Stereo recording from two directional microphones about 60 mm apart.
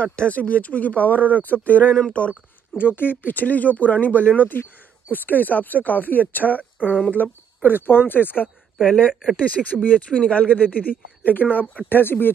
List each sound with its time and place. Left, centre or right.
0.0 s speech: centre
2.7 s speech: left